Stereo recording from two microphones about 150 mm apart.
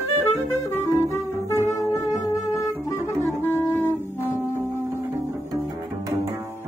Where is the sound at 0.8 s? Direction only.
20° left (ahead or behind).